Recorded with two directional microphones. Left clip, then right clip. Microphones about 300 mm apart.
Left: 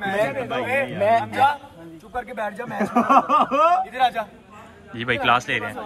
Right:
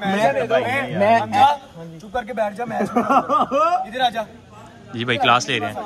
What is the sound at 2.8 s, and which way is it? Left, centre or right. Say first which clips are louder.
Speech: left 1 dB; centre.